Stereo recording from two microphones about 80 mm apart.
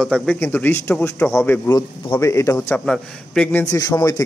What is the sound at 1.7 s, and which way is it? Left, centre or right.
Speech, left.